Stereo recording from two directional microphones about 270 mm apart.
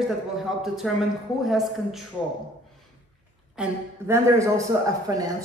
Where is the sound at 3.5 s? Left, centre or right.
Centre.